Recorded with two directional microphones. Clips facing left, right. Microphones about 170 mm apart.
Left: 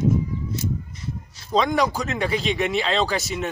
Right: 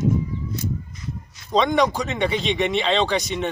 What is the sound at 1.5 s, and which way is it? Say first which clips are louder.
A man's voice: right 2 dB; centre (ahead or behind).